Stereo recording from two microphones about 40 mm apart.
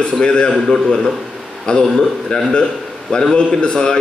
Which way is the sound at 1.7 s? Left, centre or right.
Left.